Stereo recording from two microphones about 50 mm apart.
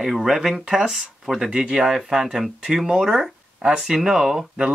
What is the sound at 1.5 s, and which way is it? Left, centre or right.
Speech, centre.